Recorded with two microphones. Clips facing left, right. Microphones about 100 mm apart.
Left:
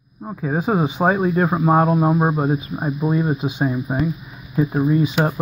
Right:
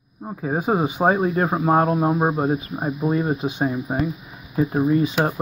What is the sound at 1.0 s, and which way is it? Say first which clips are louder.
Speech: left 1 dB; 30° right (ahead or behind).